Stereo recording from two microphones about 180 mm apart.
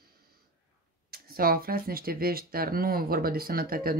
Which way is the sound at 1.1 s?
55° right (ahead or behind).